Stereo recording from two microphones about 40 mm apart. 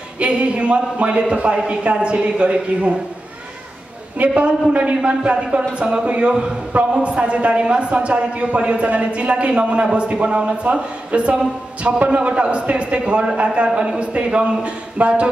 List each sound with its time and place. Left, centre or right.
0.2 s a man's voice: right
4.2 s a man's voice: right